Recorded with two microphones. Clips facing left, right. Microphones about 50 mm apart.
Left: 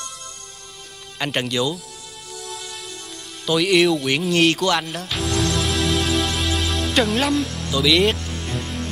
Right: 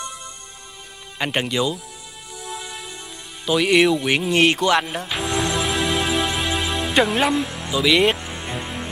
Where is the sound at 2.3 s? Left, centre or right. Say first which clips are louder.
Right 2 dB; centre.